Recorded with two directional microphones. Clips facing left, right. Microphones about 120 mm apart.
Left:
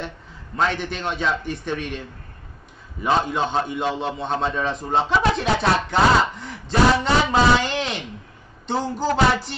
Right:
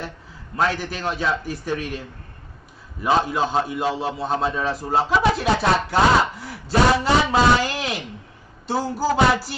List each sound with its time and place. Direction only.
0.6 s a man's voice: 5° right (ahead or behind)
8.6 s music: 5° right (ahead or behind)